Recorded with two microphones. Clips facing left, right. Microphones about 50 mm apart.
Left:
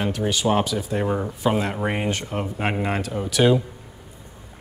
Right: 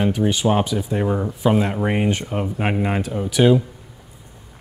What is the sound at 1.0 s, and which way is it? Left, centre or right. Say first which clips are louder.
Speech: right 4 dB; centre.